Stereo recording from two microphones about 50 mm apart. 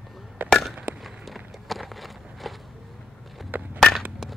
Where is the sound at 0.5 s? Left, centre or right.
Centre.